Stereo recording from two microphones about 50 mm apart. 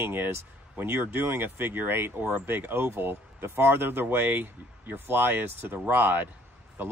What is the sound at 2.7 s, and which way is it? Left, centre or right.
Speech, right.